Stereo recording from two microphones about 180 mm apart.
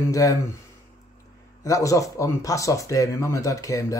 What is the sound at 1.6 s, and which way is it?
Speech, 20° left (ahead or behind).